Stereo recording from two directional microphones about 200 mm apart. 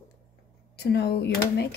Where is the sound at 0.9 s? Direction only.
55° left (ahead or behind).